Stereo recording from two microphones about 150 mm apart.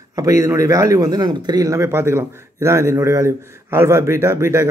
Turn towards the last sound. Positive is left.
turn(degrees=-20)  # may be behind; listen again after turning